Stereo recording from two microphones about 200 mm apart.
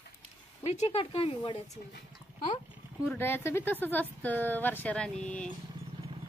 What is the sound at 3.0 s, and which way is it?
A woman's voice, 10° left (ahead or behind).